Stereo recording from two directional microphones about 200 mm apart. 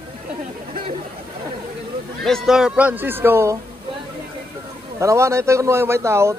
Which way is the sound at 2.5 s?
5° right (ahead or behind).